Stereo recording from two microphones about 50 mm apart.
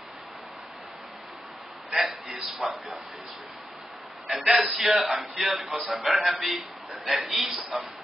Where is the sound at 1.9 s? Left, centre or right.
Centre.